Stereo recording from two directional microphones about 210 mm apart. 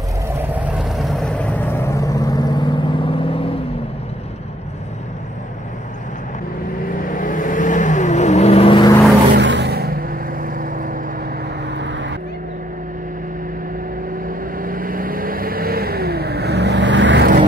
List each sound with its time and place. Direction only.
0.6 s vehicle: centre (ahead or behind); by 3.4 s 25° left (ahead or behind)
7.1 s vehicle: 40° left (ahead or behind); by 9.0 s 20° left (ahead or behind)
9.3 s vehicle: 55° right (ahead or behind); by 11.0 s 40° right (ahead or behind)
11.7 s vehicle: 60° right (ahead or behind)
14.6 s vehicle: 40° right (ahead or behind); by 17.3 s 60° right (ahead or behind)